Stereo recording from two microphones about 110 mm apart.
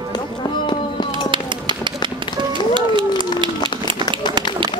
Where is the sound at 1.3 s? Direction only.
45° right (ahead or behind).